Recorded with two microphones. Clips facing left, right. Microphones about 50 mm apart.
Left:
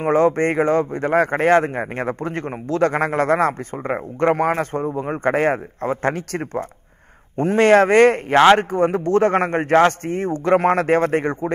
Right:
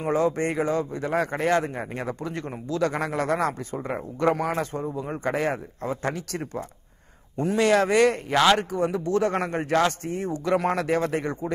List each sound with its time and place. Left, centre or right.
0.0 s speech: left